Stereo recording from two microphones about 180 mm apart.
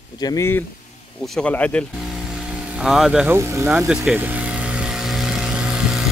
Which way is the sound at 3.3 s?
15° right (ahead or behind).